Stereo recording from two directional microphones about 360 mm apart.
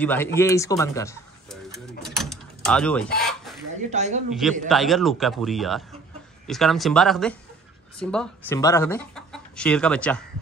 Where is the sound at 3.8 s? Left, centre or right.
Centre.